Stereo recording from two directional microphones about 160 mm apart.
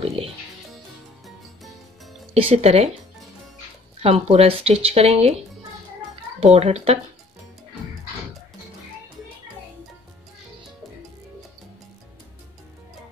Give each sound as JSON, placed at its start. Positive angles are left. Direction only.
{"t": 0.0, "sound": "speech", "side_deg": -40}
{"t": 2.3, "sound": "speech", "side_deg": -40}
{"t": 4.0, "sound": "speech", "side_deg": -35}
{"t": 6.4, "sound": "speech", "side_deg": -40}